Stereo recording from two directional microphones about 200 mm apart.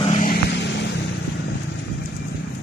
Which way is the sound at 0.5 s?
60° left (ahead or behind).